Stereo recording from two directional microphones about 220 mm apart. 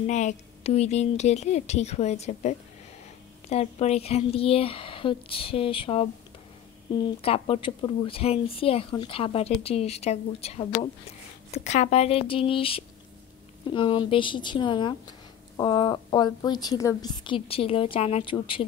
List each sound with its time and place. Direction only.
0.0 s a woman's voice: 35° left (ahead or behind)
7.2 s speech: 25° left (ahead or behind)